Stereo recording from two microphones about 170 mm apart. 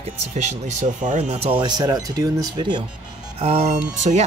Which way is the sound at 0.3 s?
45° right (ahead or behind).